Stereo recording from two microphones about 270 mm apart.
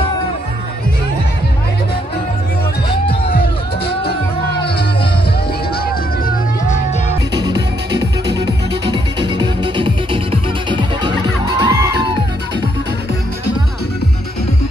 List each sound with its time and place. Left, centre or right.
3.3 s music: left
6.2 s music: left
7.3 s music: centre